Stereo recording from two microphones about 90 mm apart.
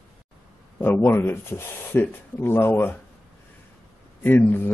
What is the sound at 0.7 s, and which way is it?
Speech, 25° left (ahead or behind).